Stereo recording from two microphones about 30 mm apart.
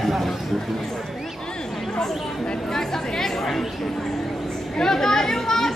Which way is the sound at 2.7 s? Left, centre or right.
Centre.